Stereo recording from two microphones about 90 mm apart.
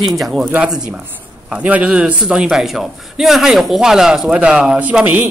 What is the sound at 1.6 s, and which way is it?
A man's voice, 15° right (ahead or behind).